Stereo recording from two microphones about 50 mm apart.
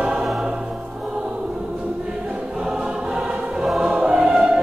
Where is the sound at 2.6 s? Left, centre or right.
Centre.